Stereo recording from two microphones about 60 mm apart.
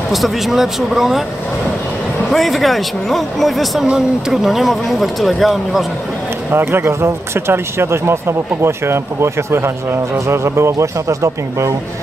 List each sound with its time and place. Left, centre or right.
0.1 s speech: centre
2.2 s speech: centre
6.5 s speech: right